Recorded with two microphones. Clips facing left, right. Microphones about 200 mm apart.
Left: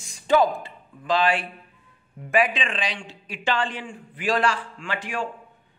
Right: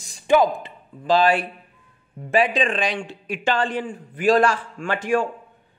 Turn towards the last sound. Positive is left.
turn(degrees=-45)  # may be behind; listen again after turning